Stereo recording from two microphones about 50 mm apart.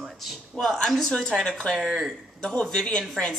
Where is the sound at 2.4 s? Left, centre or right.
Centre.